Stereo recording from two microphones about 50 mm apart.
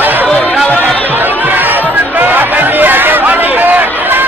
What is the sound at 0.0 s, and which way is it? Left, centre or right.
Chatter, right.